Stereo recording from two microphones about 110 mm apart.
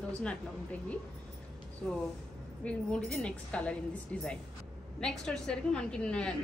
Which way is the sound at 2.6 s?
10° left (ahead or behind).